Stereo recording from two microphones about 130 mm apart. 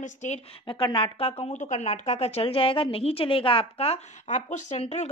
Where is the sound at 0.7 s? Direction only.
40° left (ahead or behind).